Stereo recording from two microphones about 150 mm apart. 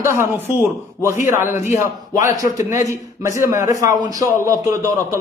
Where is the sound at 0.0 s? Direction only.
15° right (ahead or behind).